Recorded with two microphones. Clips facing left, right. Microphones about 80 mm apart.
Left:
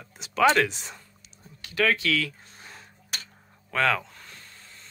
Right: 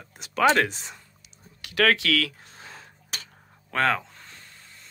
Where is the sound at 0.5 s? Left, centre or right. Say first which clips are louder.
Even; right.